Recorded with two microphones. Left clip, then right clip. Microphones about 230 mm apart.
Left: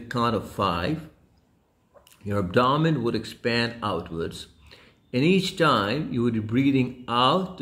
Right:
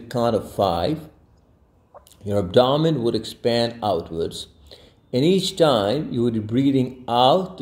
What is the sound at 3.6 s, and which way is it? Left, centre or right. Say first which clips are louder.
Speech: right 6 dB; centre.